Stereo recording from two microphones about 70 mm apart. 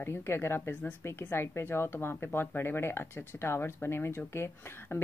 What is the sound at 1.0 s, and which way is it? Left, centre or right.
Speech, left.